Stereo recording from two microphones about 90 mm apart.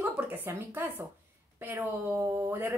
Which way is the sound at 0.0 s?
25° right (ahead or behind).